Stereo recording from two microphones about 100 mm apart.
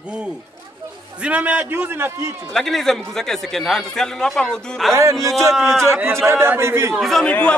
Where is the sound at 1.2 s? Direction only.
15° right (ahead or behind).